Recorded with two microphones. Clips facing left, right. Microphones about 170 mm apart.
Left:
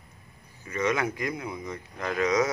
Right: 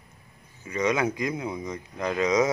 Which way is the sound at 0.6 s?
20° right (ahead or behind).